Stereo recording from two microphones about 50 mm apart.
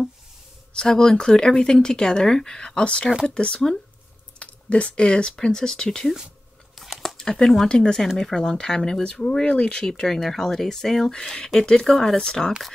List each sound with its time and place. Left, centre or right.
0.7 s speech: centre
6.7 s chewing: centre
7.2 s speech: centre